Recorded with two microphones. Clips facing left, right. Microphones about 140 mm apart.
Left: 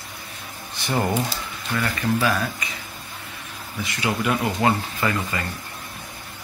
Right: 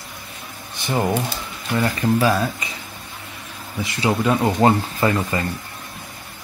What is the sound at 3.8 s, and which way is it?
Speech, 30° right (ahead or behind).